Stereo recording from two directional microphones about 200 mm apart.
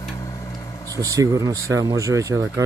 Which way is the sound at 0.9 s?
15° right (ahead or behind).